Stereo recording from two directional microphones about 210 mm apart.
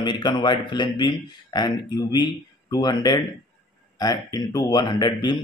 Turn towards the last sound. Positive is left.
turn(degrees=20)  # may be behind; listen again after turning